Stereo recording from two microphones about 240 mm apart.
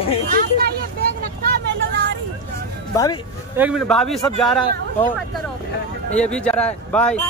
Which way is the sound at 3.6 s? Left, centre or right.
Centre.